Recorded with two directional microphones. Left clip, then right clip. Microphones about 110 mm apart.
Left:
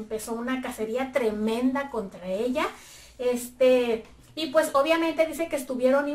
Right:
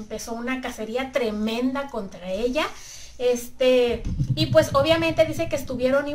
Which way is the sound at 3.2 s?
30° right (ahead or behind).